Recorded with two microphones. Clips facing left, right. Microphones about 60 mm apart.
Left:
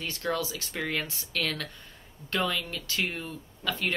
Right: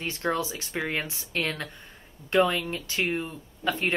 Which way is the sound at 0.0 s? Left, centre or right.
Right.